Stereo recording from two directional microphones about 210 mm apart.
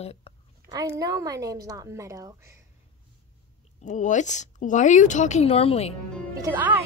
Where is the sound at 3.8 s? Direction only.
35° left (ahead or behind).